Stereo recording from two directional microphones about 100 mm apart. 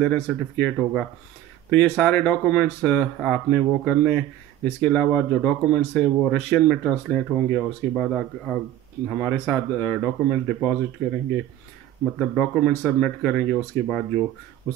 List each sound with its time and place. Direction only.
0.0 s speech: 10° left (ahead or behind)
9.2 s speech: 15° left (ahead or behind)
12.0 s speech: 10° left (ahead or behind)